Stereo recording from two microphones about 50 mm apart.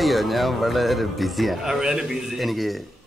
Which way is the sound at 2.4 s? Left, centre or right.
Centre.